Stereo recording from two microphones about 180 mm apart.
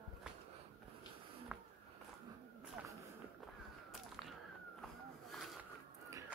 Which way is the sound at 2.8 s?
5° right (ahead or behind).